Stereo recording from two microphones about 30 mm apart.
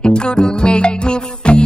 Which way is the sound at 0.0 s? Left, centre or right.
Left.